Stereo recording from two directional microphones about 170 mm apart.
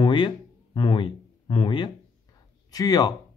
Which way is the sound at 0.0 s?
30° left (ahead or behind).